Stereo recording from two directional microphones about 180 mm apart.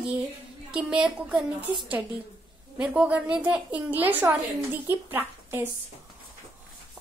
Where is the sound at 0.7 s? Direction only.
5° right (ahead or behind).